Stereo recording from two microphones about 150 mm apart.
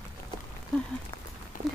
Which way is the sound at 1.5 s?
65° left (ahead or behind).